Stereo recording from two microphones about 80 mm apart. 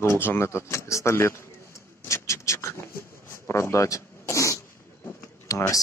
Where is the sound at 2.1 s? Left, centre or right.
Left.